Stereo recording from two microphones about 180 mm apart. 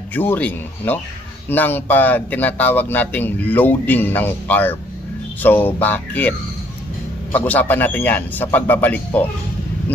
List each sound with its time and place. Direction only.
0.1 s speech: 10° left (ahead or behind)
7.3 s speech: 10° left (ahead or behind)